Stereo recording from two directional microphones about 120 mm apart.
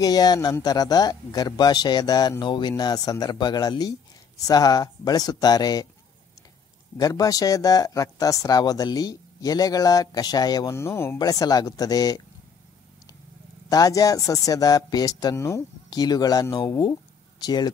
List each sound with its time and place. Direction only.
0.0 s speech: 35° left (ahead or behind)
7.0 s speech: 30° left (ahead or behind)
10.8 s speech: 20° left (ahead or behind)
11.1 s speech: 30° left (ahead or behind)
13.7 s speech: 30° left (ahead or behind)
15.9 s speech: 35° left (ahead or behind)